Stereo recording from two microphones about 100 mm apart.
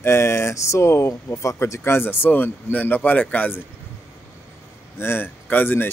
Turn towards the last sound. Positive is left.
turn(degrees=20)  # may be behind; listen again after turning